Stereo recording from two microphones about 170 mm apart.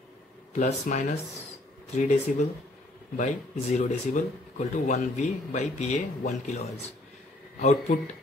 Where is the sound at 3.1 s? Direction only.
45° left (ahead or behind).